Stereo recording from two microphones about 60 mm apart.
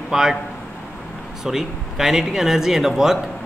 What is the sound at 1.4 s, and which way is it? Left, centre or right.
A man's voice, centre.